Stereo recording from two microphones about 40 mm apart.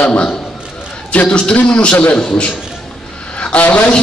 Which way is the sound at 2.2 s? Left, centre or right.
Centre.